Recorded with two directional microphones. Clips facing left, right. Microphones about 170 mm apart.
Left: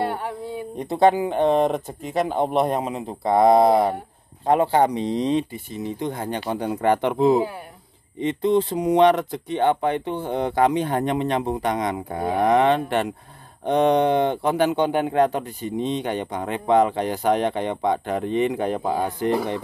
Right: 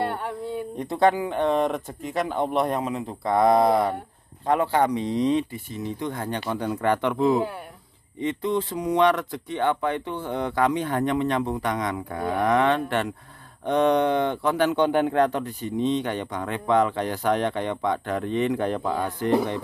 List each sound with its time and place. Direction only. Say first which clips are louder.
0.0 s a sound: left 2 dB; 5° left (ahead or behind)
0.7 s speech: left 4 dB; 25° left (ahead or behind)
18.8 s speech: left 3 dB; 35° left (ahead or behind)
19.0 s speech: left 3 dB; 15° left (ahead or behind)